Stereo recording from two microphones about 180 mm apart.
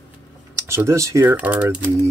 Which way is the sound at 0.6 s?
15° right (ahead or behind).